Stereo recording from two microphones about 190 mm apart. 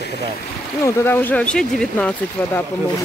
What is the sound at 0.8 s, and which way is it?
Speech, 10° left (ahead or behind).